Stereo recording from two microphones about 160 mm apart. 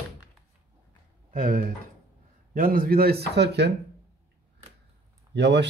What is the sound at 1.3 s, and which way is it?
Speech, 55° right (ahead or behind).